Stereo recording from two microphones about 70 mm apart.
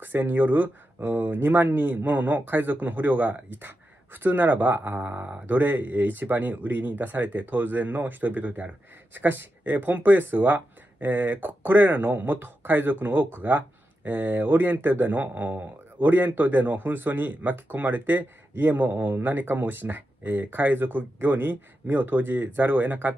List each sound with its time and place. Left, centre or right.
0.0 s speech: right